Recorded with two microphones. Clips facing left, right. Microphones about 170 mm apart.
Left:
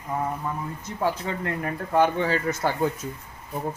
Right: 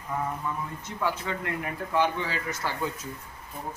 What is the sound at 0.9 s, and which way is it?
Speech, 35° left (ahead or behind).